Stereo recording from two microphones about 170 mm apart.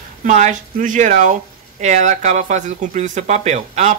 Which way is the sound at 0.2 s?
45° right (ahead or behind).